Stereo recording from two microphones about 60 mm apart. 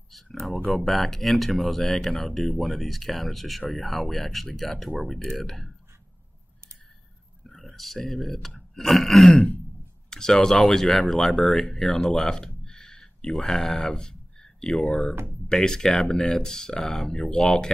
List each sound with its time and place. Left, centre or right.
0.1 s speech: centre
7.4 s speech: centre
9.3 s speech: centre